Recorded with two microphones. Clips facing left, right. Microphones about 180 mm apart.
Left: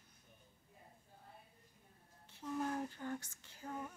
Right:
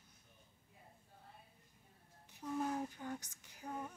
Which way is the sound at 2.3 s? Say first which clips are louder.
Right 1 dB; 10° right (ahead or behind).